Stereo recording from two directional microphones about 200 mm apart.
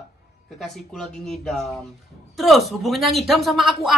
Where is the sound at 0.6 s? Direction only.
Centre (ahead or behind).